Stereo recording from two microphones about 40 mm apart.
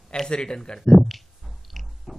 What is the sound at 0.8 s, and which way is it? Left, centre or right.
Speech, centre.